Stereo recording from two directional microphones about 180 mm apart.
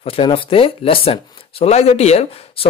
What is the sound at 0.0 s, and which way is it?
Speech, 30° left (ahead or behind).